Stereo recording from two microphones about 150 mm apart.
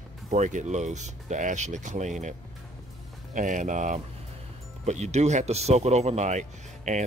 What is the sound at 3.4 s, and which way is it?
Speech, 60° right (ahead or behind).